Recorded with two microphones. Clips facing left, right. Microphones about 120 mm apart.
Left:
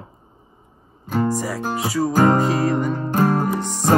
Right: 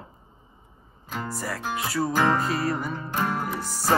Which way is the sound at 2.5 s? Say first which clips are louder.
Left 7 dB; centre (ahead or behind).